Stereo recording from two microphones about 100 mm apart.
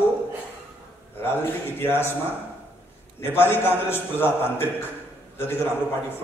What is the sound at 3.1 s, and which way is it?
A woman's voice, 25° left (ahead or behind).